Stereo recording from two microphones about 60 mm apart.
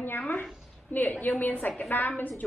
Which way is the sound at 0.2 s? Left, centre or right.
Left.